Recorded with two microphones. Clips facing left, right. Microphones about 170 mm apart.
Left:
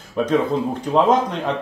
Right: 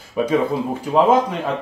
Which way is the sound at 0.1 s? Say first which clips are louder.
Even; 5° right (ahead or behind).